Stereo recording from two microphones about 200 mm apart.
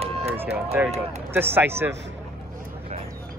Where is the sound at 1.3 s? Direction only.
10° right (ahead or behind).